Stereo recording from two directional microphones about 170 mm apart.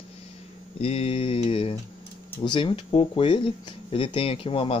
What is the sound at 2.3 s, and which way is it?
Speech, 25° left (ahead or behind).